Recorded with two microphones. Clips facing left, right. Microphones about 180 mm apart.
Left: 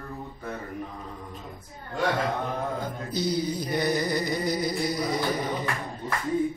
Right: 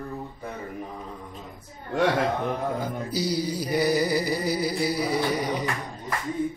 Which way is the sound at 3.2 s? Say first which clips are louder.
Left 1 dB; 35° right (ahead or behind).